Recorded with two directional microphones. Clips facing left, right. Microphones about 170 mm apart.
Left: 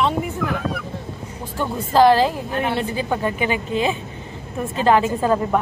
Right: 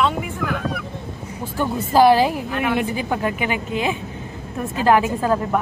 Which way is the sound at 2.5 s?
35° left (ahead or behind).